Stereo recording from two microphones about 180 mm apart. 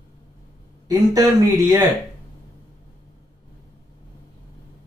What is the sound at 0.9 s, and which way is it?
Speech, 20° right (ahead or behind).